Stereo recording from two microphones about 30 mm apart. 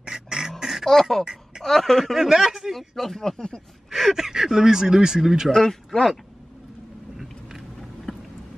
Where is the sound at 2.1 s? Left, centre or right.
Centre.